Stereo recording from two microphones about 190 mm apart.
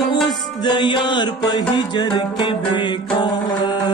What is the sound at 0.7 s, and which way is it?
Music, 25° left (ahead or behind).